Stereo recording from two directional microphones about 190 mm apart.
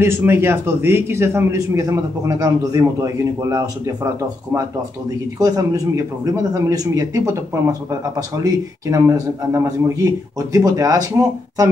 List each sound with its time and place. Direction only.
0.0 s speech: 10° right (ahead or behind)
5.4 s speech: 15° right (ahead or behind)